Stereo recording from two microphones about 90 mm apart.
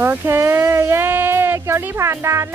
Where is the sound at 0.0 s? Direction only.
20° right (ahead or behind).